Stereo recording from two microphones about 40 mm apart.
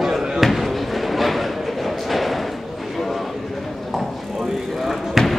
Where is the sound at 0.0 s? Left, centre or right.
Centre.